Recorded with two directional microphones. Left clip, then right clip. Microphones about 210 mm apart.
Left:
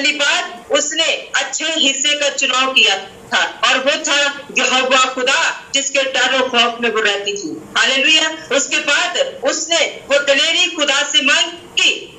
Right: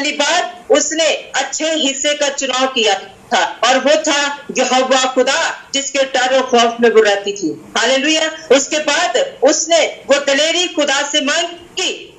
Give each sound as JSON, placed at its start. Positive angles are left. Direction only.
{"t": 0.0, "sound": "a woman's voice", "side_deg": -30}